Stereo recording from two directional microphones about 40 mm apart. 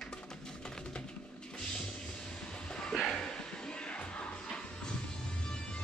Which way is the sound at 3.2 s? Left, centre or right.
Centre.